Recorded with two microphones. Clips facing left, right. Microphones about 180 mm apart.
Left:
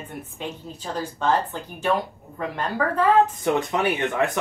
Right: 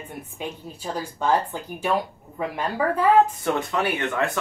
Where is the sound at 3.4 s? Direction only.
20° left (ahead or behind).